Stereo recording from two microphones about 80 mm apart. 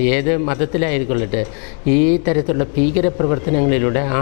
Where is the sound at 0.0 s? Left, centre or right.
Centre.